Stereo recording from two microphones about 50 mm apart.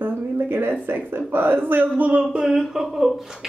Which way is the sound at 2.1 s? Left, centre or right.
Centre.